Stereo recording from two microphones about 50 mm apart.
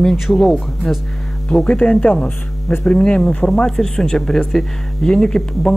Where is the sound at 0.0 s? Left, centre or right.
Centre.